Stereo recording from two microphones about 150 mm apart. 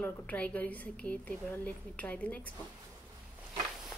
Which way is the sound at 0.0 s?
10° left (ahead or behind).